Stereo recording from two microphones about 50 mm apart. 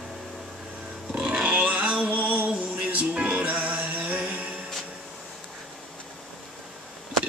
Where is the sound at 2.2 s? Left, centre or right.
Right.